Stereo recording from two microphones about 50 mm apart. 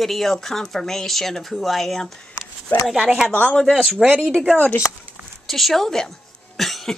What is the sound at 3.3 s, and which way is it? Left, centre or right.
Speech, left.